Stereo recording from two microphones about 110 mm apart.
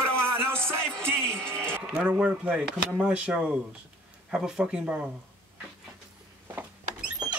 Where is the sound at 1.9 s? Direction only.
10° right (ahead or behind).